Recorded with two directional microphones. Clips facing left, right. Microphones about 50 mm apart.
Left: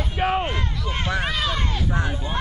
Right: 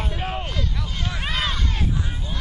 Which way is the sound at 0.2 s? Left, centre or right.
Left.